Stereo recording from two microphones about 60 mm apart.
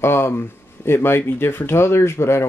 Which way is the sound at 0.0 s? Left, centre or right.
Left.